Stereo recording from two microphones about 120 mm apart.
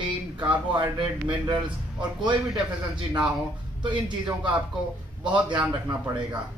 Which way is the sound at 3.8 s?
40° right (ahead or behind).